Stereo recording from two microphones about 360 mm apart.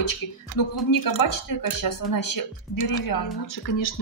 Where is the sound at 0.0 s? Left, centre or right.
Left.